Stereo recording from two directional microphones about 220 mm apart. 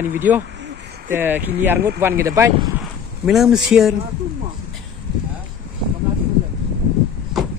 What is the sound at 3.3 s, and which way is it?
Speech, centre (ahead or behind).